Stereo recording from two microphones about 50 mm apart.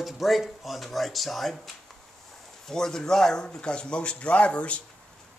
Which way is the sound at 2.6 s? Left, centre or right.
Centre.